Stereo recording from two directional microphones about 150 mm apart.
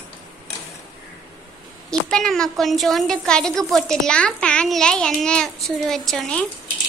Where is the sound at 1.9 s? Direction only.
5° left (ahead or behind).